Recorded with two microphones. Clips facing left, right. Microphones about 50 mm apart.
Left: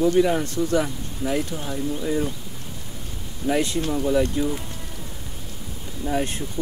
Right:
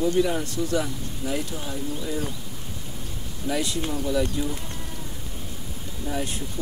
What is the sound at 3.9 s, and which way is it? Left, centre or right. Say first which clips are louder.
Speech: left 5 dB; left.